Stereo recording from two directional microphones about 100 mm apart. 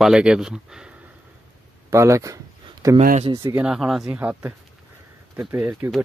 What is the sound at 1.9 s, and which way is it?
Speech, 30° right (ahead or behind).